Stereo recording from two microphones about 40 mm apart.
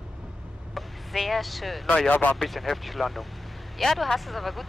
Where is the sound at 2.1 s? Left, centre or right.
Left.